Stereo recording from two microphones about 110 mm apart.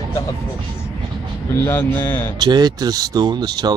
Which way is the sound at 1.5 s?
20° left (ahead or behind).